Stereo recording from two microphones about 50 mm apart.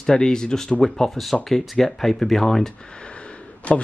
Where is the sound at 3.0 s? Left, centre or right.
Left.